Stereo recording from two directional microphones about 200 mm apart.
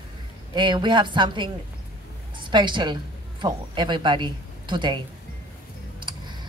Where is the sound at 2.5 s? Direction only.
25° right (ahead or behind).